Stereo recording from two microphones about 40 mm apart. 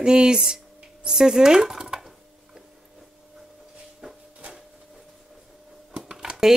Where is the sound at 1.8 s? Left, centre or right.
Centre.